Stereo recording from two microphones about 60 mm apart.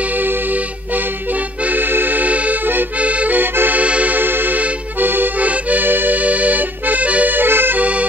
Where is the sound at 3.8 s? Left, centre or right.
Right.